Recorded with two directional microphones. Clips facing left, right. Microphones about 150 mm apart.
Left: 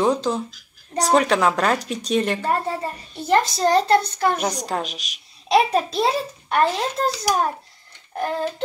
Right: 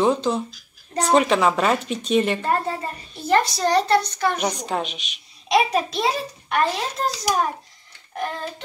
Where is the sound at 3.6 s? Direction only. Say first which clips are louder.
Left 2 dB; 30° left (ahead or behind).